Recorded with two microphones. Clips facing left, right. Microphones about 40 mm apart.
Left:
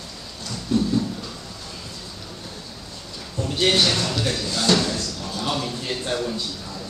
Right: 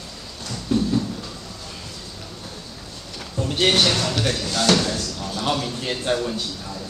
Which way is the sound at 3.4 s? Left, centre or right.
Right.